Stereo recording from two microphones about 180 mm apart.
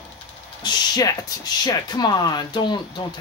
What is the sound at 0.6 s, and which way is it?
Speech, 25° left (ahead or behind).